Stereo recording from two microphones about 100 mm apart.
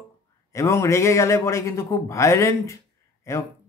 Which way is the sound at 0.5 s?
30° left (ahead or behind).